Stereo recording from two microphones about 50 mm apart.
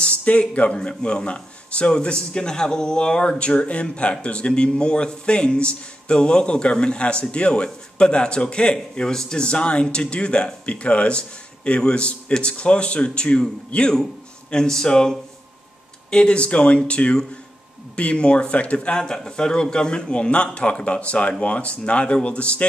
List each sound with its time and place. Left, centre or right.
0.2 s speech: left
14.5 s speech: centre